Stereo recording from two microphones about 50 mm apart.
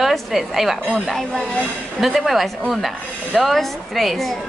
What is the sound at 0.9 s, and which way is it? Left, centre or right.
A woman's voice, centre.